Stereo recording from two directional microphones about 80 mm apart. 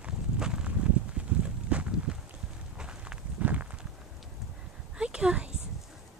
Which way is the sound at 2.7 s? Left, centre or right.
Centre.